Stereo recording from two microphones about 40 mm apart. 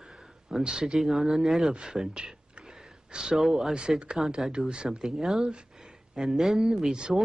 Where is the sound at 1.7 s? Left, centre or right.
Centre.